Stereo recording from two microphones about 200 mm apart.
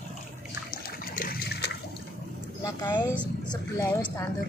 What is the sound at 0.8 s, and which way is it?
Water, 45° left (ahead or behind).